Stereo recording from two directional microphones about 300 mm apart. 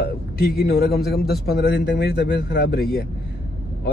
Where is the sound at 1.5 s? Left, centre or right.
Left.